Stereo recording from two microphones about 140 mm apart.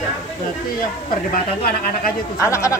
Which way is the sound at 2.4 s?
20° left (ahead or behind).